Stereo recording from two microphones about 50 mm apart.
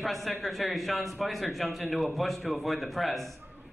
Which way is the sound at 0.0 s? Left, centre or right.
Centre.